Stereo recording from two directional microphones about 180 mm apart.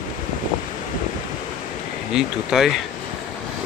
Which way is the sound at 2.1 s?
Centre (ahead or behind).